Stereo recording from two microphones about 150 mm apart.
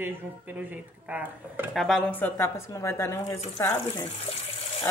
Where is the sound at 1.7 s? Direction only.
Centre (ahead or behind).